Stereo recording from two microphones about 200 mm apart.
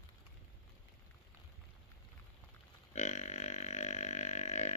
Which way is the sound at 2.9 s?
35° left (ahead or behind).